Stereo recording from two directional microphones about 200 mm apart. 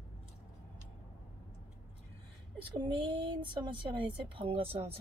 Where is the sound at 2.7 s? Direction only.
25° right (ahead or behind).